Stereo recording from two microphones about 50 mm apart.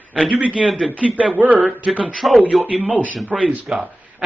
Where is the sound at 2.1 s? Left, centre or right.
Centre.